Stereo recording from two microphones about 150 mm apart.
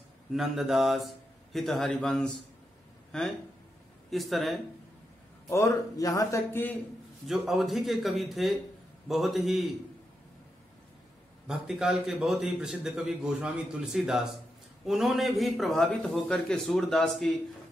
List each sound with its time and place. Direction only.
0.3 s a man's voice: centre (ahead or behind)
5.5 s speech: 20° left (ahead or behind)
7.2 s a man's voice: centre (ahead or behind)
11.4 s a man's voice: 5° right (ahead or behind)